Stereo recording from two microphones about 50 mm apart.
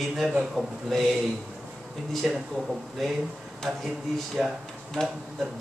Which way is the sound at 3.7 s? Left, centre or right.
Centre.